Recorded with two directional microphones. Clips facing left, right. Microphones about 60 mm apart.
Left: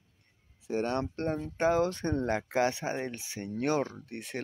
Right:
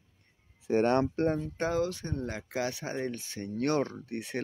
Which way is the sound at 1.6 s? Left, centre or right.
Left.